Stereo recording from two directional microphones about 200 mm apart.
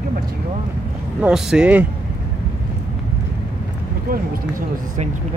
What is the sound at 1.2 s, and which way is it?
Speech, 5° right (ahead or behind).